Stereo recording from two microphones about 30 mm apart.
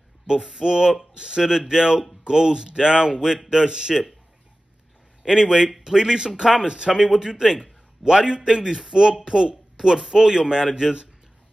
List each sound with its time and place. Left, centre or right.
0.5 s a man's voice: right
5.2 s a man's voice: right